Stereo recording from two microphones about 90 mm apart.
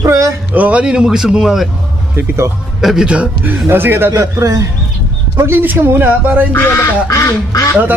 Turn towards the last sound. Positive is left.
turn(degrees=40)  # may be behind; listen again after turning